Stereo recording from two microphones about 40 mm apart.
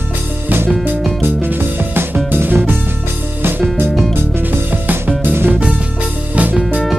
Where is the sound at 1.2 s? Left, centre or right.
Right.